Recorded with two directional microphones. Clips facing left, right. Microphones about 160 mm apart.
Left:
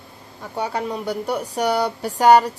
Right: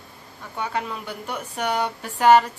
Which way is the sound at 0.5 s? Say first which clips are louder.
Left 4 dB; 35° left (ahead or behind).